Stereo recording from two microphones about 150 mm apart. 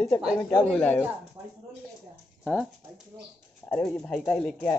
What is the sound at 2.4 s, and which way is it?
Speech, 5° right (ahead or behind).